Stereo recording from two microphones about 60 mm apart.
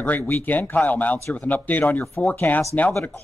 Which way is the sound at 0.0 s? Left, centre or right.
Left.